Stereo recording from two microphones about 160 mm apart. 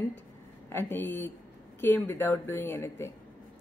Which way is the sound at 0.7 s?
15° left (ahead or behind).